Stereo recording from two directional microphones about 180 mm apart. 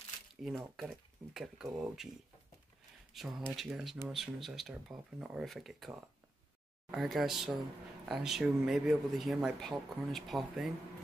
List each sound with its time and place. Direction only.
0.7 s speech: centre (ahead or behind)
3.1 s speech: centre (ahead or behind)